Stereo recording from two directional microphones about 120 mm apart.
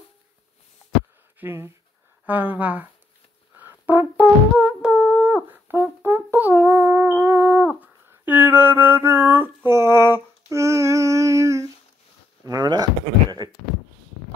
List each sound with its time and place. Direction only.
1.4 s speech: 20° right (ahead or behind)
3.5 s brass instrument: 15° right (ahead or behind)
4.2 s music: 10° right (ahead or behind)
6.0 s a sound: 15° right (ahead or behind); by 12.9 s 30° right (ahead or behind)